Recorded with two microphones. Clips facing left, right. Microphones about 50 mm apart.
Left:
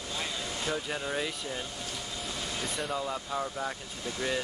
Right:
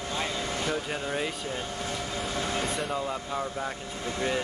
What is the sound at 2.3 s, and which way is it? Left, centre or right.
Vehicle, right.